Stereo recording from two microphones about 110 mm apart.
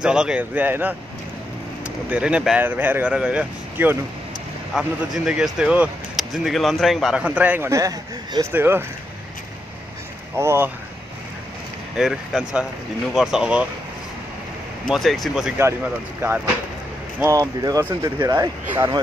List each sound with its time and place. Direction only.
0.0 s speech: 10° right (ahead or behind)
2.0 s speech: 10° right (ahead or behind)
4.7 s speech: 5° right (ahead or behind)
7.2 s speech: 15° right (ahead or behind)
7.7 s speech: 35° right (ahead or behind)
8.5 s speech: 20° right (ahead or behind)
10.3 s speech: 25° right (ahead or behind)
12.0 s speech: 5° right (ahead or behind)
14.9 s speech: centre (ahead or behind)
15.5 s speech: 20° right (ahead or behind)
17.2 s speech: 30° right (ahead or behind)